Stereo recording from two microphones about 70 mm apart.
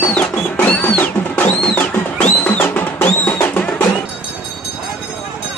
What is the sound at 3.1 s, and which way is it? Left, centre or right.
Music, centre.